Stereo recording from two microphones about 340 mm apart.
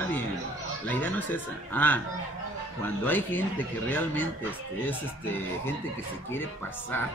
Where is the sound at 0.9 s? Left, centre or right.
Centre.